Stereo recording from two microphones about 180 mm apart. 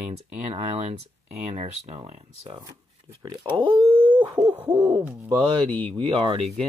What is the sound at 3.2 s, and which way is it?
Speech, 25° right (ahead or behind).